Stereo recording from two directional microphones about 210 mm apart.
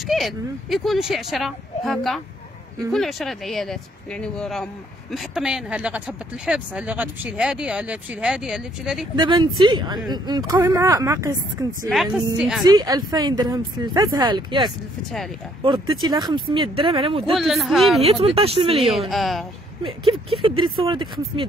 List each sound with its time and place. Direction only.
0.0 s speech: centre (ahead or behind)
9.1 s speech: 20° right (ahead or behind)
11.9 s speech: centre (ahead or behind)
12.6 s speech: 15° right (ahead or behind)
17.4 s speech: centre (ahead or behind)
18.0 s speech: 25° right (ahead or behind)
18.9 s speech: centre (ahead or behind)
19.8 s speech: 25° right (ahead or behind)